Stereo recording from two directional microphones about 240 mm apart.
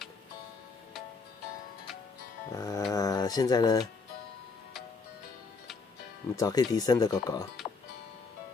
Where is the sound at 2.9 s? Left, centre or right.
Centre.